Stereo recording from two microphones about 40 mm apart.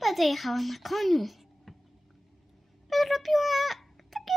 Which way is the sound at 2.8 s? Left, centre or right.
Centre.